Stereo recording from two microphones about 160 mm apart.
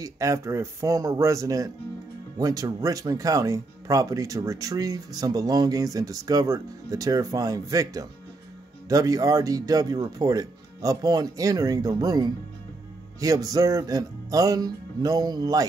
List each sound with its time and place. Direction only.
0.0 s speech: 20° right (ahead or behind)